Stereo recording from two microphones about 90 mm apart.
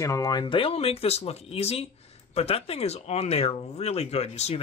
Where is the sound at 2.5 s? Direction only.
90° left.